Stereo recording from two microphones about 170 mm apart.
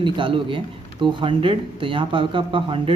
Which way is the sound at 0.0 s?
30° right (ahead or behind).